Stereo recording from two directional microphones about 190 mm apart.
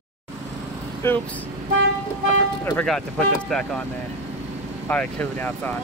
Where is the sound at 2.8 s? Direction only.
5° left (ahead or behind).